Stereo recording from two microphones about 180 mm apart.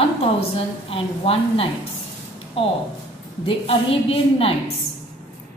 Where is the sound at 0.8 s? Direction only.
30° left (ahead or behind).